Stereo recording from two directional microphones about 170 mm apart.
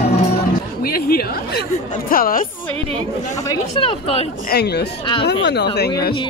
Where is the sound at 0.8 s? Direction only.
65° left (ahead or behind).